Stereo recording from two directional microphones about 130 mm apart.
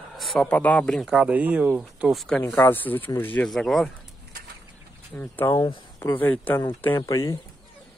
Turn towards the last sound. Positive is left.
turn(degrees=25)  # may be behind; listen again after turning